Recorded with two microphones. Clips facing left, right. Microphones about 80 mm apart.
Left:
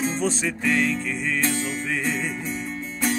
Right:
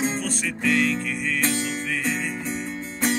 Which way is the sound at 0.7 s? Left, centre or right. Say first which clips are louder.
Right 1 dB; centre.